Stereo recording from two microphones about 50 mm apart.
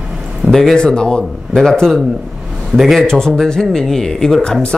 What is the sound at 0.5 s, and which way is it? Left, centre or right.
Speech, centre.